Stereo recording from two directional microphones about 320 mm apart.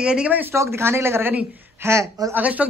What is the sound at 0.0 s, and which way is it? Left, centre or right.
Speech, centre.